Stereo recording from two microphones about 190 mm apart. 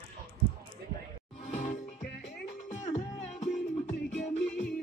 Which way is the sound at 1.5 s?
40° left (ahead or behind).